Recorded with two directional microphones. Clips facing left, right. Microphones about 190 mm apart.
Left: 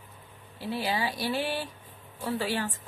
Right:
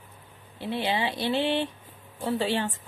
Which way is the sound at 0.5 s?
25° right (ahead or behind).